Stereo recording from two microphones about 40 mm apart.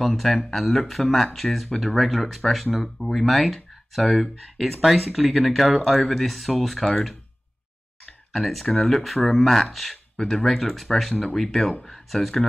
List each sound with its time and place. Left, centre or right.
0.0 s speech: centre
8.3 s speech: centre
9.4 s speech: centre
10.1 s speech: centre
10.4 s speech: centre